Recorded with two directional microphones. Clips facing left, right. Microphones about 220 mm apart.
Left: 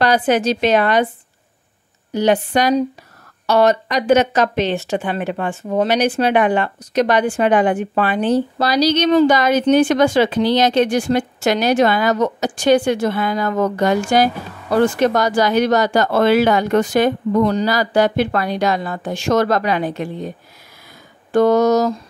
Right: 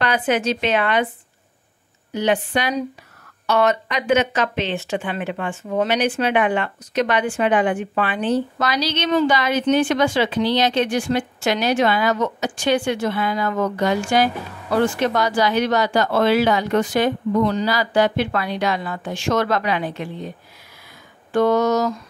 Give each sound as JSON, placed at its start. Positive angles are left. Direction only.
{"t": 0.0, "sound": "speech", "side_deg": 40}
{"t": 2.1, "sound": "speech", "side_deg": 40}